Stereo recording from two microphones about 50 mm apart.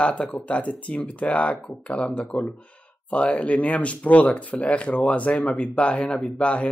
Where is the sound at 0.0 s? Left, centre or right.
Left.